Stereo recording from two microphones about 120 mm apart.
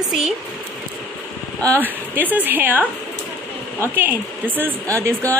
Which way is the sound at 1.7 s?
15° right (ahead or behind).